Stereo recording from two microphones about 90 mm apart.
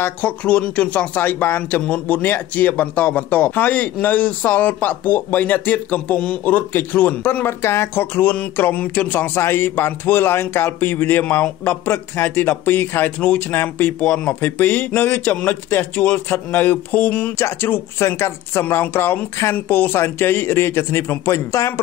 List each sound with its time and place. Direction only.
0.0 s speech: 15° left (ahead or behind); by 21.8 s 35° left (ahead or behind)